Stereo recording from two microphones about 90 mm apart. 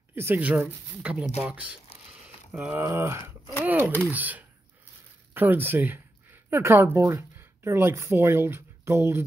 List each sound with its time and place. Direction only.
0.1 s speech: 25° right (ahead or behind)
2.2 s a sound: 15° right (ahead or behind)
2.8 s speech: 30° right (ahead or behind)